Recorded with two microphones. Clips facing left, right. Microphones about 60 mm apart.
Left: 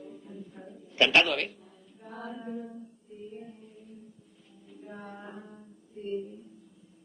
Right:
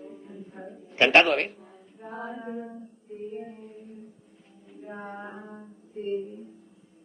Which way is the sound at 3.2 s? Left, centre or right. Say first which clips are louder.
Right 7 dB; right.